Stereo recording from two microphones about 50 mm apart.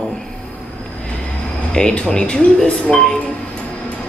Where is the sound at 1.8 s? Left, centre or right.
Centre.